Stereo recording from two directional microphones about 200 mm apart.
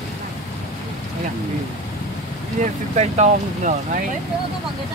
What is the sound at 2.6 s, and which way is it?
Speech, 35° right (ahead or behind).